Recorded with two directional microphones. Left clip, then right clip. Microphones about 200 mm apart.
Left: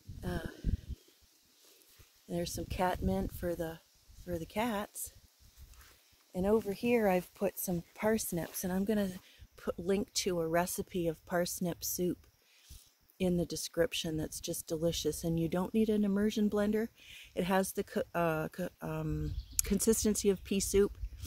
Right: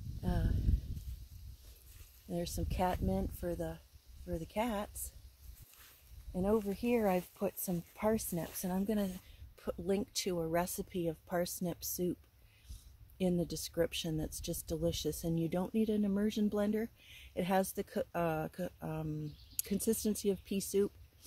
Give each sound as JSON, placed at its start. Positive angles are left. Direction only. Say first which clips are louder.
{"t": 0.2, "sound": "a sound", "louder": "left 1 dB", "side_deg": 15}
{"t": 2.2, "sound": "speech", "louder": "left 2 dB", "side_deg": 15}
{"t": 6.3, "sound": "speech", "louder": "left 3 dB", "side_deg": 10}
{"t": 13.2, "sound": "speech", "louder": "left 2 dB", "side_deg": 10}